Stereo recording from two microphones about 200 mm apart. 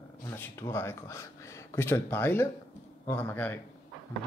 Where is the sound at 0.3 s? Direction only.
10° left (ahead or behind).